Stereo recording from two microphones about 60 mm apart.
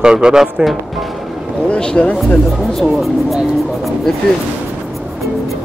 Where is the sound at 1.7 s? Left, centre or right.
Centre.